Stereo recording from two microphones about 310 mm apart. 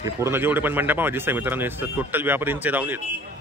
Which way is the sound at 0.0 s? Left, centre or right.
Centre.